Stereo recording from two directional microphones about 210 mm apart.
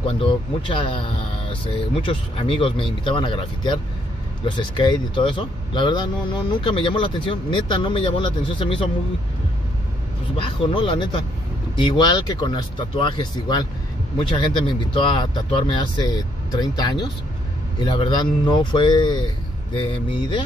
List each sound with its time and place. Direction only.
0.0 s speech: 25° left (ahead or behind)
10.3 s speech: 25° left (ahead or behind)